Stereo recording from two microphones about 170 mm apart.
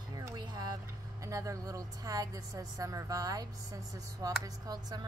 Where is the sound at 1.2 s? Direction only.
20° right (ahead or behind).